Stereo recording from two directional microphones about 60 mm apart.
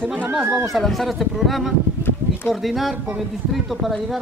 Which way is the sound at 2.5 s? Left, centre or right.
Centre.